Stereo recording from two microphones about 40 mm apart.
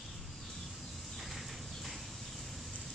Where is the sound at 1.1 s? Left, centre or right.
Centre.